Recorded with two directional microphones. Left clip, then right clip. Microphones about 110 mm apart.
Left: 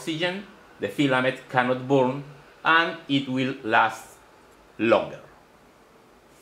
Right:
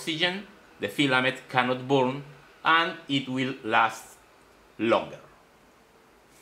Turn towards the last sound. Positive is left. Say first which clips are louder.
# left 4 dB
turn(degrees=-5)  # may be behind; listen again after turning